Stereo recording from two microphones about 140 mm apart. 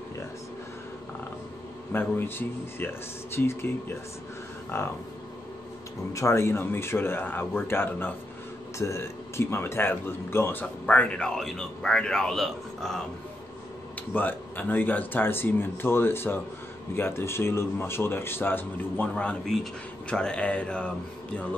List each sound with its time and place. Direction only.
1.9 s speech: 15° left (ahead or behind)
4.7 s speech: 20° left (ahead or behind)
6.1 s speech: 20° left (ahead or behind); by 13.0 s centre (ahead or behind)
14.1 s speech: 15° left (ahead or behind)